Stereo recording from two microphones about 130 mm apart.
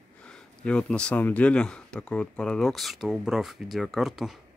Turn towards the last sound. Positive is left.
turn(degrees=-5)  # may be behind; listen again after turning